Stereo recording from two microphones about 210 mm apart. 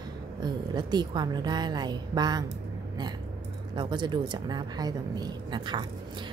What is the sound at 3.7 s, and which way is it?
A woman's voice, 20° right (ahead or behind).